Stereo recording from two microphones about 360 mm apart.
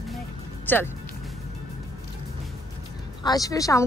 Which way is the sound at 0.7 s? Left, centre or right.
Centre.